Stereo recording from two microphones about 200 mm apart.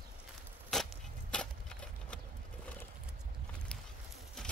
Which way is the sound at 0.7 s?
Centre (ahead or behind).